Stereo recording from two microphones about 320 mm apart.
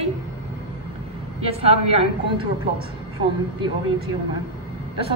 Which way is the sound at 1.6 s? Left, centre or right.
Centre.